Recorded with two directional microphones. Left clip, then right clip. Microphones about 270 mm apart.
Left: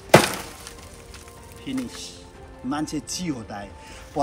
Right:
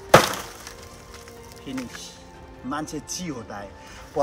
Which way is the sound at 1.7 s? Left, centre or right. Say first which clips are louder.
Left 3 dB; centre.